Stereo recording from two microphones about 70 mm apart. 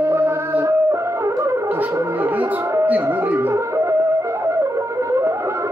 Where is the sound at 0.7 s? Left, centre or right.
Right.